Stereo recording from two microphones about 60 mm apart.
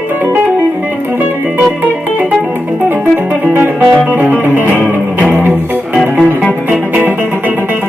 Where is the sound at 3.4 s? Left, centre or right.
Right.